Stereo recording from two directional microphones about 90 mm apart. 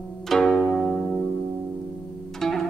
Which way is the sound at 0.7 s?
Centre (ahead or behind).